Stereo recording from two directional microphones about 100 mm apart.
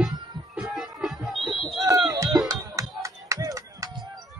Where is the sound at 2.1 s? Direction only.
35° right (ahead or behind).